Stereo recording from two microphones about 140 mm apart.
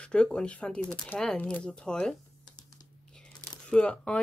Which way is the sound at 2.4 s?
30° left (ahead or behind).